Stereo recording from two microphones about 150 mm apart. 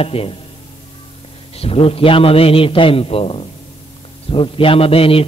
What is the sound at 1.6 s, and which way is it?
A man's voice, 40° left (ahead or behind).